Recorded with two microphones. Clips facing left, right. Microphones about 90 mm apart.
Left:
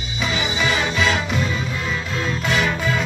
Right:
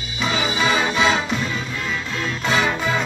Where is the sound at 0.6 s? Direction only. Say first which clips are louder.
Right 2 dB; 15° right (ahead or behind).